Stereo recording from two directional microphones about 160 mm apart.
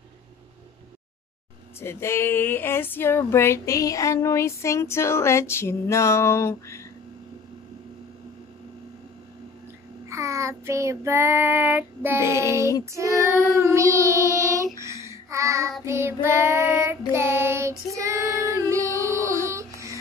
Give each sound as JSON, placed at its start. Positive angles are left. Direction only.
{"t": 1.8, "sound": "a sound", "side_deg": 15}
{"t": 10.0, "sound": "child singing", "side_deg": -20}
{"t": 18.5, "sound": "music", "side_deg": -20}